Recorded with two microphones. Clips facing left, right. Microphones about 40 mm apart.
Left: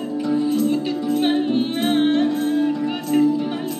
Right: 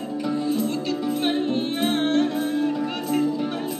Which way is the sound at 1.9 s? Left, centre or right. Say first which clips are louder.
Left 5 dB; centre.